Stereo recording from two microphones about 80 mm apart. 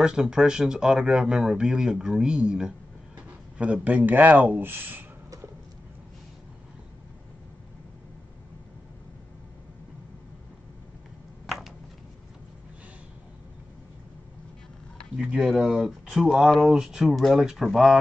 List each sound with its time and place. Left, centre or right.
0.0 s speech: centre; by 5.0 s right
11.4 s a sound: centre
15.1 s speech: centre